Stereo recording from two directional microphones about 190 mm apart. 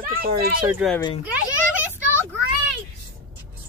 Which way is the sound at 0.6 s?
5° right (ahead or behind).